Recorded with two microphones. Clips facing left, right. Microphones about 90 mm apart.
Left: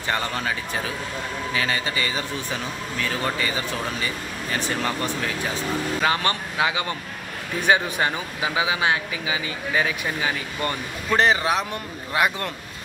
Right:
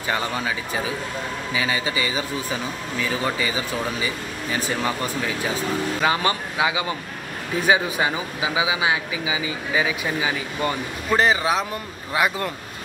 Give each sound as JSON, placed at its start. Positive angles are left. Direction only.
{"t": 0.1, "sound": "speech", "side_deg": -10}
{"t": 1.5, "sound": "speech", "side_deg": -10}